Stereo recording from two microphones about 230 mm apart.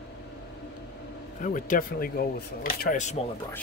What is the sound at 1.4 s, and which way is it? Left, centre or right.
Speech, left.